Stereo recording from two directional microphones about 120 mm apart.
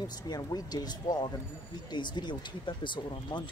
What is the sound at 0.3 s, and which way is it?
Speech, 35° left (ahead or behind).